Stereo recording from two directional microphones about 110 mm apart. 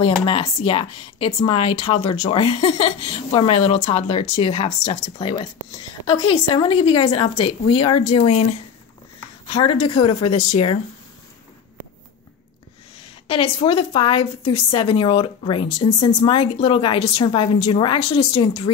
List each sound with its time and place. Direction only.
0.0 s speech: 50° left (ahead or behind)
6.0 s speech: 40° left (ahead or behind)
6.5 s speech: 55° left (ahead or behind); by 8.5 s 80° left
9.5 s speech: 55° left (ahead or behind)
13.3 s speech: 55° left (ahead or behind)